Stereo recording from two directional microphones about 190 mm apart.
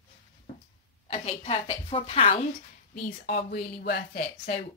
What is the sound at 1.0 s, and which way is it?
Speech, 35° left (ahead or behind).